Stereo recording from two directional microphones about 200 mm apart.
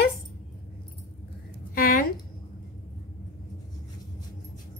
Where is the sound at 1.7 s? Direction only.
45° left (ahead or behind).